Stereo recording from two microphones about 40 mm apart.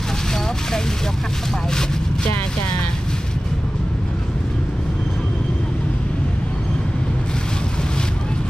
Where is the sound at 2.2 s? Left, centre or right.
Left.